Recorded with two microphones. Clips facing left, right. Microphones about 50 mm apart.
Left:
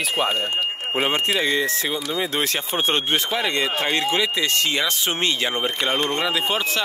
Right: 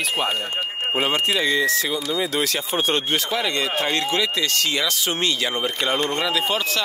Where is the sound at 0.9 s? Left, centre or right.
Left.